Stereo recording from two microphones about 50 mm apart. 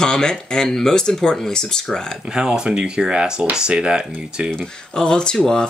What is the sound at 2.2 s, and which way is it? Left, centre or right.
Speech, centre.